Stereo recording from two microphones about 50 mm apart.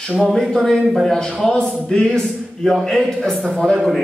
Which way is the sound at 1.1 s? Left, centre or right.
Centre.